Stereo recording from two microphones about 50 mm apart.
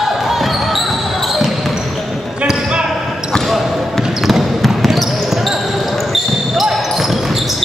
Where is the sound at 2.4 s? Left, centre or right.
Centre.